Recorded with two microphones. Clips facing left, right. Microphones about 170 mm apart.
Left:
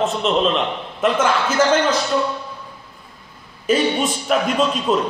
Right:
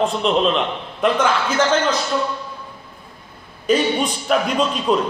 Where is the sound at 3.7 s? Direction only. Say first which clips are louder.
Even; centre (ahead or behind).